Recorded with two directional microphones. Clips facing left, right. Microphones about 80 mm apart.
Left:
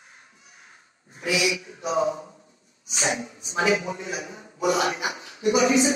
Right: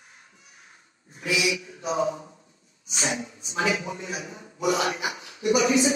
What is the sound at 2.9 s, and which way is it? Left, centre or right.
A man's voice, left.